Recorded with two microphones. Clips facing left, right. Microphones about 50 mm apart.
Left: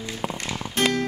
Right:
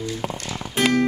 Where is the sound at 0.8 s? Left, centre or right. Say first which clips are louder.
Right 2 dB; centre.